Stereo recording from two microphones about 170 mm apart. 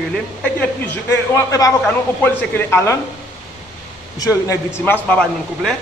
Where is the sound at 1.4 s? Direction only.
20° left (ahead or behind).